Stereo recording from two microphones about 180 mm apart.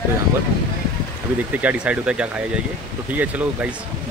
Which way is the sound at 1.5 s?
5° right (ahead or behind).